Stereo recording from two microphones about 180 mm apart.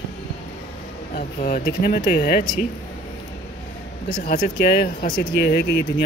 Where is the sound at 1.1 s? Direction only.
50° left (ahead or behind).